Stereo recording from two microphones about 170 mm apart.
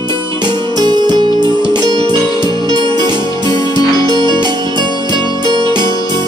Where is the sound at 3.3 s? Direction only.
25° left (ahead or behind).